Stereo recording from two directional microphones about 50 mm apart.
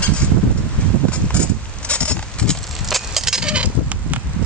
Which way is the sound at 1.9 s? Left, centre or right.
Left.